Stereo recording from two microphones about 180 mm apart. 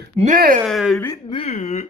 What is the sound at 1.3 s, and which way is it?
Speech, 35° left (ahead or behind).